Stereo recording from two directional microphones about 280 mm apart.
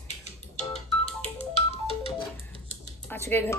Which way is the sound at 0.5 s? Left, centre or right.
Left.